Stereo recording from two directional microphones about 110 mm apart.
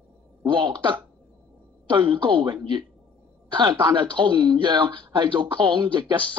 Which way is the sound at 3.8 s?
45° right (ahead or behind).